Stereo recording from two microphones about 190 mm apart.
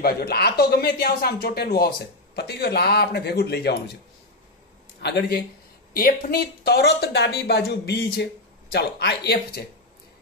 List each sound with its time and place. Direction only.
0.0 s speech: 55° left (ahead or behind)
5.0 s speech: 60° left (ahead or behind)
5.9 s speech: 50° left (ahead or behind)